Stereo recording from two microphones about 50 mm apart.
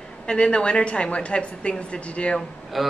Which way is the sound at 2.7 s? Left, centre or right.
Centre.